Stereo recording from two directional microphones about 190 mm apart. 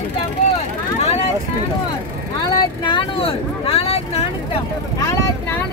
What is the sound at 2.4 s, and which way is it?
Vehicle, 20° left (ahead or behind).